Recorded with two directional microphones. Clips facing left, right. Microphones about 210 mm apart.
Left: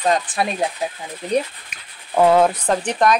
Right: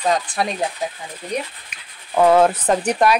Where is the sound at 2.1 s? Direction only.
Centre (ahead or behind).